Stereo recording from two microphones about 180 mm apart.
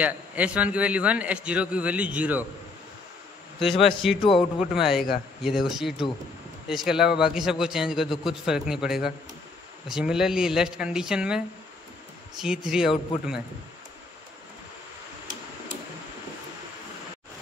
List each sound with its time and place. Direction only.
0.0 s a man's voice: 5° right (ahead or behind)
3.7 s a man's voice: 30° left (ahead or behind)
4.4 s a man's voice: 5° right (ahead or behind)